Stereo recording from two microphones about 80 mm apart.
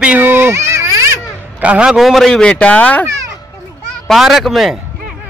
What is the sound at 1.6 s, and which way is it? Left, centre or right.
Speech, centre.